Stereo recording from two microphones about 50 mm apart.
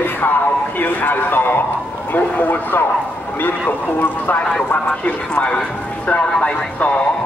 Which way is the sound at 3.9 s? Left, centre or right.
Left.